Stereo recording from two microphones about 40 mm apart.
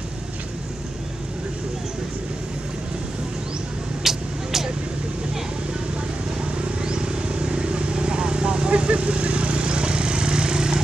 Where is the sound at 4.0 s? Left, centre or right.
Centre.